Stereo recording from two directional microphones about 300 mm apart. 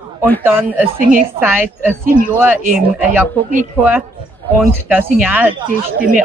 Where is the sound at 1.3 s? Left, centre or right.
Centre.